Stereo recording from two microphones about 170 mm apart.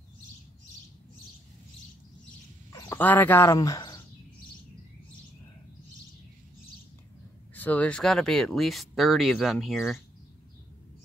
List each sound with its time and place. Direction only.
2.7 s a sound: 20° left (ahead or behind)
3.0 s speech: 10° left (ahead or behind)
7.5 s speech: 10° left (ahead or behind)